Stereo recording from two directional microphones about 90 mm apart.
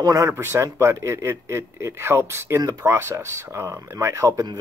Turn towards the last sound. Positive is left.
turn(degrees=-40)  # may be behind; listen again after turning